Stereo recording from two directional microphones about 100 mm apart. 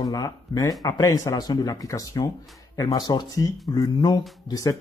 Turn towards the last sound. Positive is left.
turn(degrees=35)  # may be behind; listen again after turning